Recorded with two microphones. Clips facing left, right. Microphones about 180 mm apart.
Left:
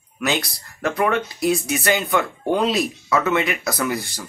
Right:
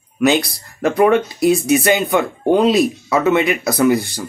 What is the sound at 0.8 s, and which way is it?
Speech, 20° right (ahead or behind).